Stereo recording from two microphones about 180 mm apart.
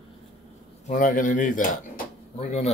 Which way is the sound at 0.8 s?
50° left (ahead or behind).